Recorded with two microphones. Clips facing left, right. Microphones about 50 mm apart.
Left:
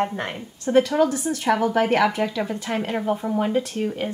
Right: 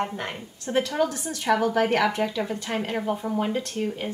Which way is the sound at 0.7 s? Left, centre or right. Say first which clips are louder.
Left 6 dB; centre.